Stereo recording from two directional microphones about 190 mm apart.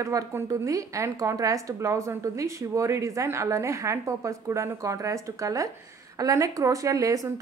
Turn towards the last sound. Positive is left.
turn(degrees=-15)  # may be behind; listen again after turning